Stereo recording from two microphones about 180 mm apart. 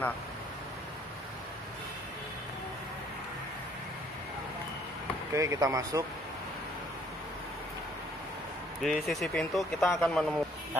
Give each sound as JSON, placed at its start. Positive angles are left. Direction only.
{"t": 5.3, "sound": "speech", "side_deg": -15}
{"t": 8.8, "sound": "speech", "side_deg": 0}